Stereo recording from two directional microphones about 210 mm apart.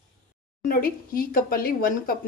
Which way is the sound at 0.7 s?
45° left (ahead or behind).